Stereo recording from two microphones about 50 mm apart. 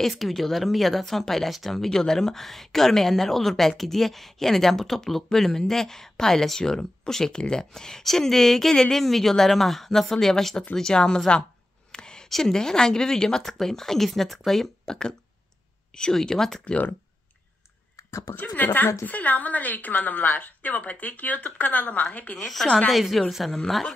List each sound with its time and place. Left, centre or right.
0.1 s a woman's voice: centre
11.9 s a sound: centre
12.3 s speech: centre
18.3 s a woman's voice: left
22.8 s a woman's voice: centre